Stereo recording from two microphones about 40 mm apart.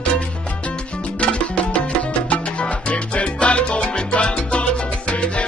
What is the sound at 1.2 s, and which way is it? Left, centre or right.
Music, left.